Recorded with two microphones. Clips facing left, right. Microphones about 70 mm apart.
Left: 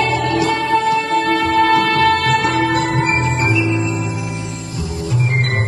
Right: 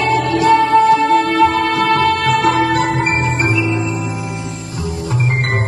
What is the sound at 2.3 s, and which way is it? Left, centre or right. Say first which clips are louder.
Music: right 2 dB; right.